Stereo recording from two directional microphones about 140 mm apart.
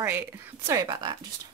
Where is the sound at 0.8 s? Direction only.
30° right (ahead or behind).